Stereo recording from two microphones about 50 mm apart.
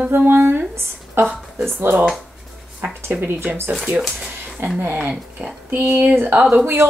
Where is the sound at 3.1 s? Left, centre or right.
Centre.